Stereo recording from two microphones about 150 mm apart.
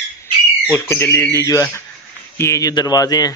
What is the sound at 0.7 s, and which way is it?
Speech, 15° left (ahead or behind).